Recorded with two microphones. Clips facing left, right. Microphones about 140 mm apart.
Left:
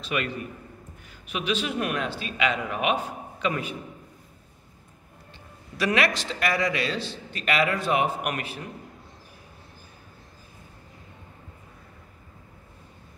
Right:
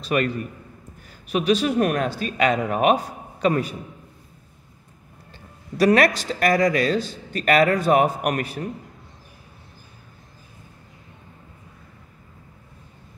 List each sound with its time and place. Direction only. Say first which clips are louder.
0.0 s speech: right 7 dB; 40° right (ahead or behind)
1.3 s speech: right 8 dB; 40° right (ahead or behind)
5.8 s speech: right 7 dB; 40° right (ahead or behind)